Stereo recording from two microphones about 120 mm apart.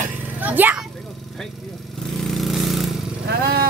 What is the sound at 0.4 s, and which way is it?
Speech, 15° right (ahead or behind).